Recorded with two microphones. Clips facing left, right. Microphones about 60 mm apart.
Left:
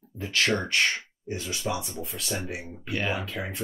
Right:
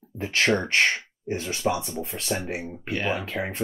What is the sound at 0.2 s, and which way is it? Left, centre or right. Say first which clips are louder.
Speech: right 3 dB; right.